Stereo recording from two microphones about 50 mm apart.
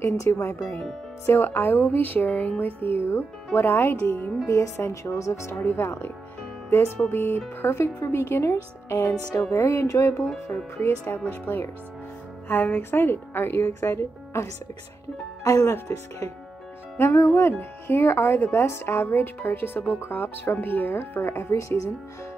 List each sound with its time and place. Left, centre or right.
0.0 s a woman's voice: left
1.2 s speech: left
4.5 s speech: left
5.6 s speech: left
7.7 s a woman's voice: left
10.8 s speech: left
15.4 s speech: left
17.0 s a woman's voice: left